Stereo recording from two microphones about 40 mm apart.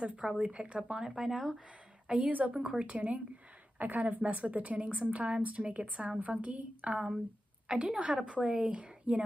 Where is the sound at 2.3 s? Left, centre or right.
Right.